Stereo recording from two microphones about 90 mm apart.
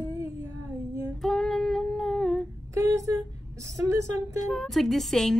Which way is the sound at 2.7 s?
35° right (ahead or behind).